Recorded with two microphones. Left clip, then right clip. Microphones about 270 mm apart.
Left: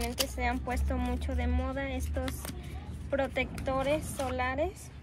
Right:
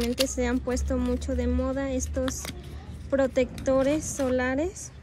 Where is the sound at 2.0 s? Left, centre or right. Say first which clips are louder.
Right 7 dB; centre.